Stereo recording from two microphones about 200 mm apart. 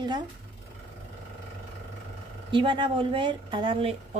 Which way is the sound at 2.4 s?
25° right (ahead or behind).